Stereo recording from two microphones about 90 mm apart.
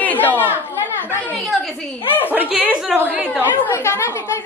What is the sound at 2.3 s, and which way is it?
A woman's voice, 15° right (ahead or behind).